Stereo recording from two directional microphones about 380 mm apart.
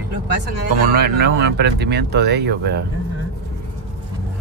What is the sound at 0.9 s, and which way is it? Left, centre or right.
Speech, right.